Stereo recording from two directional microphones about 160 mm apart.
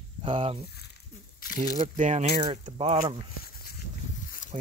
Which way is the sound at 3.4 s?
70° left (ahead or behind).